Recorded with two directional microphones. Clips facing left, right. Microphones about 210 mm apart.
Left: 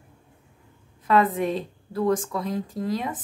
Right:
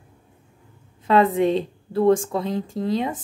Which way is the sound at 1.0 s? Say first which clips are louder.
Right 4 dB; 25° right (ahead or behind).